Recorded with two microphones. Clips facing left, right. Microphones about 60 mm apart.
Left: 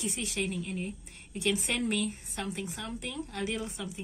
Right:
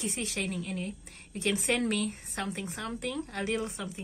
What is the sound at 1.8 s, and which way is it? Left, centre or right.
Speech, right.